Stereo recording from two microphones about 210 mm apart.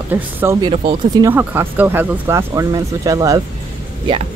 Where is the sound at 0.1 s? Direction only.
10° right (ahead or behind).